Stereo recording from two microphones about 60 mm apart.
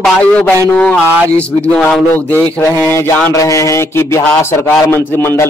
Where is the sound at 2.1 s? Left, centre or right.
Left.